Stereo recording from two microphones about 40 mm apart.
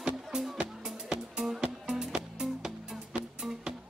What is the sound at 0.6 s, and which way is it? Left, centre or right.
Music, right.